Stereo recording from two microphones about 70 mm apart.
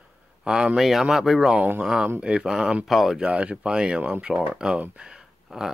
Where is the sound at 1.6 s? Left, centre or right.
Right.